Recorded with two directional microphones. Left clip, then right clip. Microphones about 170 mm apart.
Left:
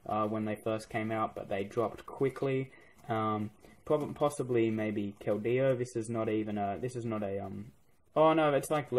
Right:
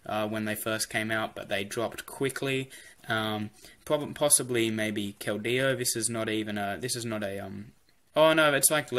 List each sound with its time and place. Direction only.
0.1 s speech: 20° right (ahead or behind)